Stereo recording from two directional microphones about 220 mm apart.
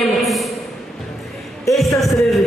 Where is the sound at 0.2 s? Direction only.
Centre (ahead or behind).